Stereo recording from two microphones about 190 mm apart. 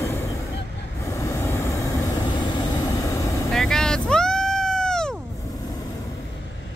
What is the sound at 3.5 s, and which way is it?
Vehicle, 5° left (ahead or behind).